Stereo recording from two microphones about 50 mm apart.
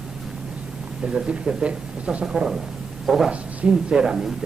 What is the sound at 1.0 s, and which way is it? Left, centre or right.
Speech, centre.